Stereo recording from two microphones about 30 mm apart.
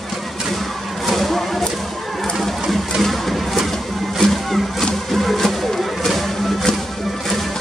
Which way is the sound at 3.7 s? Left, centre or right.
Centre.